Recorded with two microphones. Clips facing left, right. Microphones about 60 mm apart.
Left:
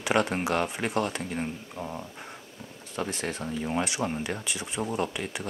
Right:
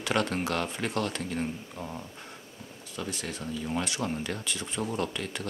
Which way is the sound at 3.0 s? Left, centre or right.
Left.